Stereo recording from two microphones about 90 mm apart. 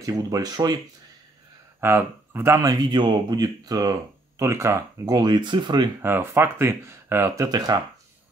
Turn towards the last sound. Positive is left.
turn(degrees=-40)  # may be behind; listen again after turning